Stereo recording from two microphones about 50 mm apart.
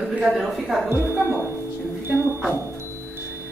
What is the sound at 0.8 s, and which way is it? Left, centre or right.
Speech, right.